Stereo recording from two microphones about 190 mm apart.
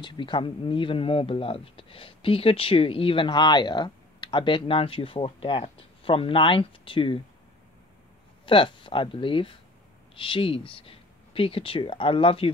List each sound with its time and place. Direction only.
0.0 s speech: 25° left (ahead or behind)
8.5 s speech: 25° left (ahead or behind)